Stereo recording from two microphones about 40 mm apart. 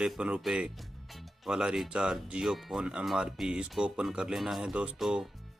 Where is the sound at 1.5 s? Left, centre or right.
Right.